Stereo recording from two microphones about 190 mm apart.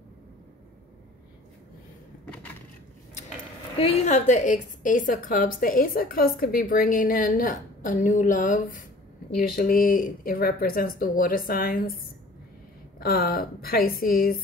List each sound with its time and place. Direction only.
3.7 s a woman's voice: 35° left (ahead or behind); by 12.0 s 50° left (ahead or behind)
13.0 s a woman's voice: 55° left (ahead or behind)